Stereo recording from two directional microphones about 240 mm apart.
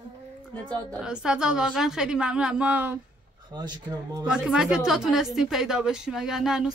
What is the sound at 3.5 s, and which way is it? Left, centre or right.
Speech, centre.